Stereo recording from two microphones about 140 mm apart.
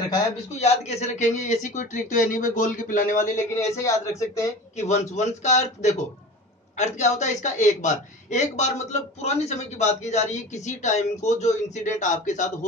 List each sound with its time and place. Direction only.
0.6 s a woman's voice: 55° left (ahead or behind); by 3.3 s 70° left (ahead or behind)
3.5 s speech: 20° left (ahead or behind)
4.7 s a woman's voice: 55° left (ahead or behind)